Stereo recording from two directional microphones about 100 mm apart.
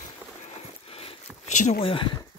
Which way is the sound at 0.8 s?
70° left (ahead or behind).